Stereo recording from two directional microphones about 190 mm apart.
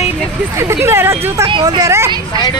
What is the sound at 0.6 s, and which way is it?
Speech, 15° right (ahead or behind).